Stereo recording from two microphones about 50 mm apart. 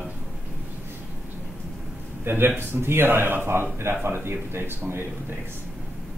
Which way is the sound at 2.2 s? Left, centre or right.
Right.